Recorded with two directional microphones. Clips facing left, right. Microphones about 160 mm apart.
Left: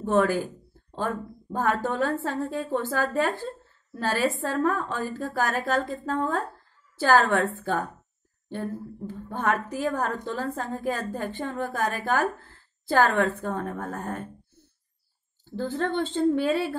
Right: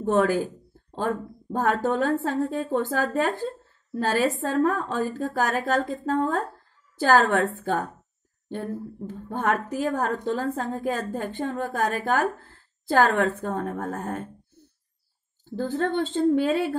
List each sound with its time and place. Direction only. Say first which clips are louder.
0.0 s a woman's voice: right 1 dB; 45° right (ahead or behind)
9.3 s a woman's voice: right 1 dB; 45° right (ahead or behind)
15.5 s a woman's voice: right 2 dB; 45° right (ahead or behind)